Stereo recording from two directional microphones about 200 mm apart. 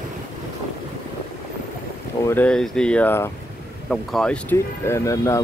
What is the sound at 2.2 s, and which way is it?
Speech, 10° left (ahead or behind).